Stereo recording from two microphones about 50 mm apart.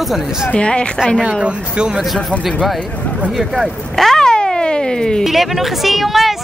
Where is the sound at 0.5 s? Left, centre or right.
Left.